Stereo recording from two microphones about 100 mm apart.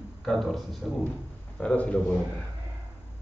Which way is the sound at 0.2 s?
Centre (ahead or behind).